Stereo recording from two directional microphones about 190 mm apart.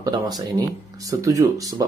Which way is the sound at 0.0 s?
20° right (ahead or behind).